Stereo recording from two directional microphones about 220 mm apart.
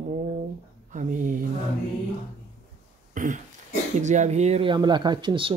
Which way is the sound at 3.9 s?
35° right (ahead or behind).